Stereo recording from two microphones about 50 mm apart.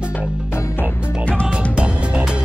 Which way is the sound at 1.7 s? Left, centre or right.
Right.